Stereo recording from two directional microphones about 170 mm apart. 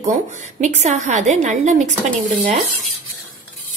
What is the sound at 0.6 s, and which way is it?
A woman's voice, 45° right (ahead or behind).